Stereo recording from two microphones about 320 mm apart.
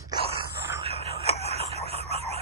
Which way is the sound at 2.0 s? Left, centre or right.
Centre.